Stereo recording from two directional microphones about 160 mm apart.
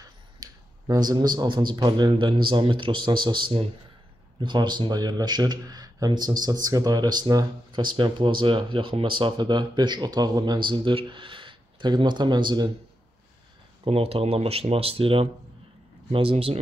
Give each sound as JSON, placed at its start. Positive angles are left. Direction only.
{"t": 0.0, "sound": "speech", "side_deg": -25}
{"t": 13.8, "sound": "speech", "side_deg": -40}